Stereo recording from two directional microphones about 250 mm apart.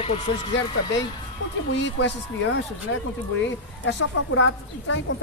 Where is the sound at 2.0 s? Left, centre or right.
Left.